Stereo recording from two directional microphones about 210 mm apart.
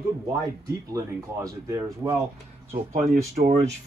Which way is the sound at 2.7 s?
40° right (ahead or behind).